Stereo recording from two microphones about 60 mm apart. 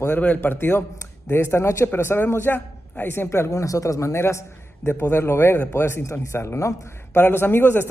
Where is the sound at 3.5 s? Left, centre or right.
Left.